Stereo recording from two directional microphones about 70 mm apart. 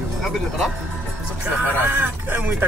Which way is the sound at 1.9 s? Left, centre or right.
Right.